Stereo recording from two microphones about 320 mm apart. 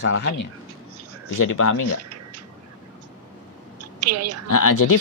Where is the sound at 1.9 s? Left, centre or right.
Right.